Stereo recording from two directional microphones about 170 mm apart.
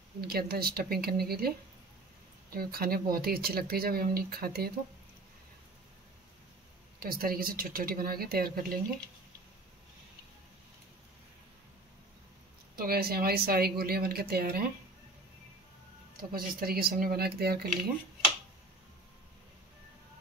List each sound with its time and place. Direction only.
0.3 s speech: 65° right (ahead or behind)
2.5 s speech: 65° right (ahead or behind)
7.0 s speech: 60° right (ahead or behind)
12.7 s speech: 65° right (ahead or behind)
16.2 s speech: 60° right (ahead or behind)